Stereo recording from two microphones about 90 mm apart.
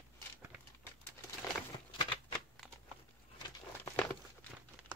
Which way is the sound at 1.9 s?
65° left (ahead or behind).